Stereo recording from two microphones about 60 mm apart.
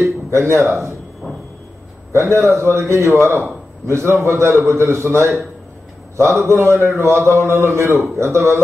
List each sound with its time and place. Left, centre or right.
0.0 s speech: right
2.1 s a man's voice: right